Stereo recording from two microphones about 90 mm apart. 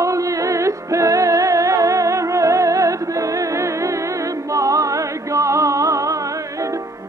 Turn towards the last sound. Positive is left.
turn(degrees=-40)  # may be behind; listen again after turning